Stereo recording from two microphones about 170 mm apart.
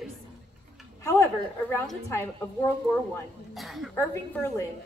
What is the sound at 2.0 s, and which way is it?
Speech, 15° left (ahead or behind).